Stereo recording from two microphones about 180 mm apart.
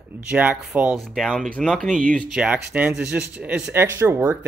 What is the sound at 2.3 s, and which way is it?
A man's voice, 5° right (ahead or behind).